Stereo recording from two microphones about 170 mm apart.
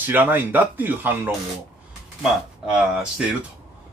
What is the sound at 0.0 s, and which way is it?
Speech, 10° right (ahead or behind).